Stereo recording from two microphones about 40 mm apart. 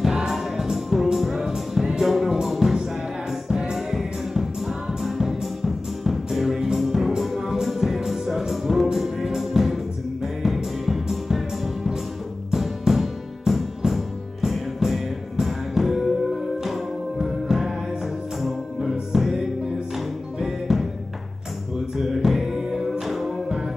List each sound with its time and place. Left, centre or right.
0.3 s music: centre
21.9 s music: centre